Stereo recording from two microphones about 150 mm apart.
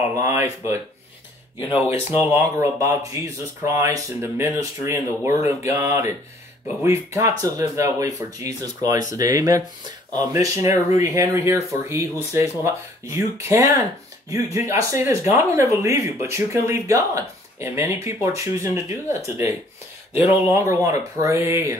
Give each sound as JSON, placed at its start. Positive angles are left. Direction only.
{"t": 0.2, "sound": "speech", "side_deg": -20}
{"t": 20.5, "sound": "speech", "side_deg": -20}